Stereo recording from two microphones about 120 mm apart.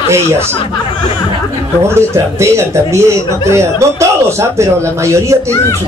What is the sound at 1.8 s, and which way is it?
Speech, 25° right (ahead or behind).